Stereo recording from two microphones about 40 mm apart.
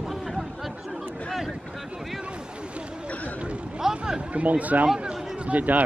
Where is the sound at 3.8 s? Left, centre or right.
Centre.